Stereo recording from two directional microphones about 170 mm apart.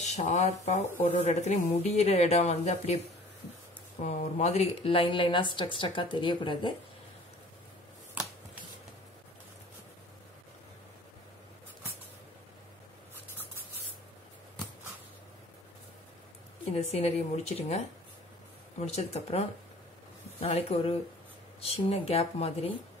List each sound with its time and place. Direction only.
0.0 s speech: 45° left (ahead or behind)
4.0 s a woman's voice: 40° left (ahead or behind)
16.8 s speech: 40° left (ahead or behind)